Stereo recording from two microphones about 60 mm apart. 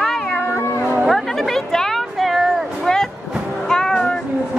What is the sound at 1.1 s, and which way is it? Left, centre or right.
Chatter, centre.